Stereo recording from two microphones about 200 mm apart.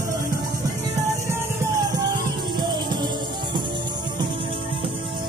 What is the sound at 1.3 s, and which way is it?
Music, 15° right (ahead or behind).